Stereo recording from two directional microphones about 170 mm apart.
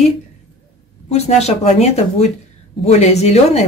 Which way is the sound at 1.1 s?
40° left (ahead or behind).